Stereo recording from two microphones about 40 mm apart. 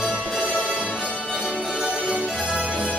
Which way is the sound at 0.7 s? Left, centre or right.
Right.